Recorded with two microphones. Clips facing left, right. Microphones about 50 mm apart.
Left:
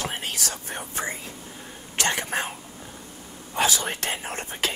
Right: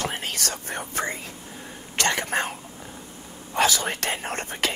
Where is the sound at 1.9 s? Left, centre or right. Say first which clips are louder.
Right 2 dB; right.